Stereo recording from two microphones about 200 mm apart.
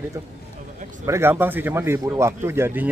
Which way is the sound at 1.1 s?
10° right (ahead or behind).